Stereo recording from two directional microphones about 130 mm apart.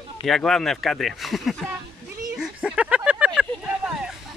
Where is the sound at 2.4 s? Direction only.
5° right (ahead or behind).